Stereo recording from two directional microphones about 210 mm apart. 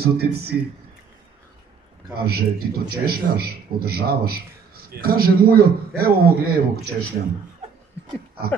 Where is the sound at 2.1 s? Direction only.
45° right (ahead or behind).